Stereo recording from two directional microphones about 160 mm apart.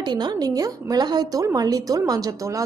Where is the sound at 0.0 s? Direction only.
25° right (ahead or behind).